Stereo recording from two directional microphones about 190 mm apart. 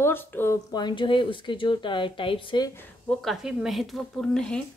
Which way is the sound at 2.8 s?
5° left (ahead or behind).